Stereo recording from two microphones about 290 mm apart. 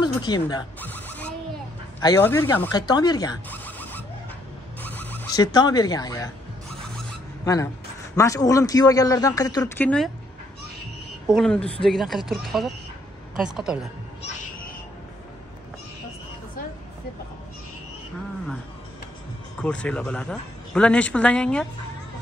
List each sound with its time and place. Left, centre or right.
0.0 s a sound: centre
2.0 s speech: centre
7.4 s speech: centre
11.2 s speech: centre
19.6 s speech: centre